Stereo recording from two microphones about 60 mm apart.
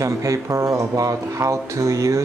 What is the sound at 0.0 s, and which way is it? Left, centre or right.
Speech, right.